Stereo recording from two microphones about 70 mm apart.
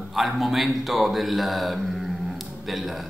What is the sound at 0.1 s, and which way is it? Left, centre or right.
Speech, centre.